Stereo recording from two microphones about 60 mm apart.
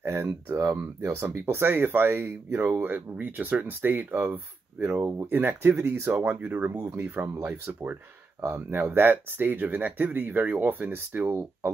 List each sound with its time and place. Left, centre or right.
0.0 s a sound: right
0.6 s speech: right
1.4 s speech: right
8.5 s speech: right